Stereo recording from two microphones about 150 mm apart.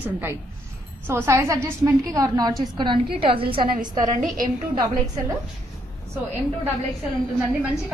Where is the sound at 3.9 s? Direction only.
60° right (ahead or behind).